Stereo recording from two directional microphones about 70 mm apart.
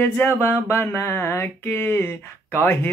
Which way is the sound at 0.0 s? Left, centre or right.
Left.